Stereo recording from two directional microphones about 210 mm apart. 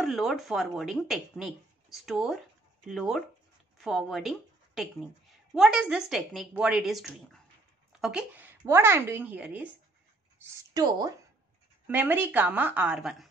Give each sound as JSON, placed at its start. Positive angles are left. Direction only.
{"t": 0.0, "sound": "a woman's voice", "side_deg": 0}
{"t": 10.4, "sound": "a woman's voice", "side_deg": -15}